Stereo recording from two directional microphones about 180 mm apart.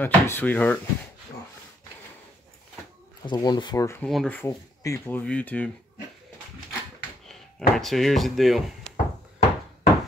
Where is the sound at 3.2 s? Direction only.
20° left (ahead or behind).